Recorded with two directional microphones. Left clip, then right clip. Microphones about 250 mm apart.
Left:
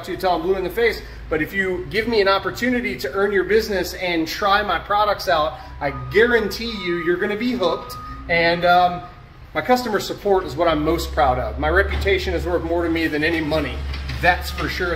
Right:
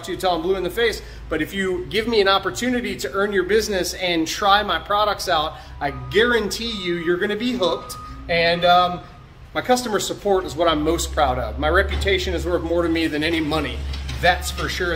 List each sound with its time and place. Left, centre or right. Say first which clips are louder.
0.2 s a man's voice: left 1 dB; centre